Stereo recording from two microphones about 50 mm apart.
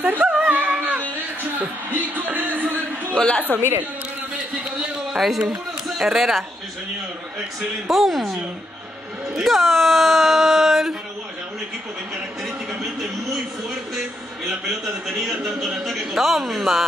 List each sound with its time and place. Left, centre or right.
0.0 s music: right
1.1 s a sound: right
3.2 s a woman's voice: centre
3.4 s a woman's voice: right
5.1 s speech: centre
7.9 s a man's voice: centre
12.8 s a man's voice: centre